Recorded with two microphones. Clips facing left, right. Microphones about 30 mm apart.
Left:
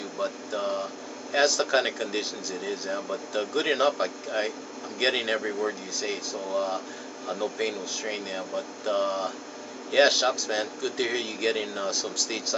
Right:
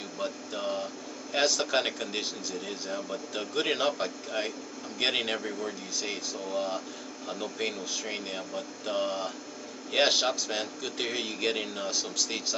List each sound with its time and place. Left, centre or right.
0.2 s speech: centre
6.5 s speech: centre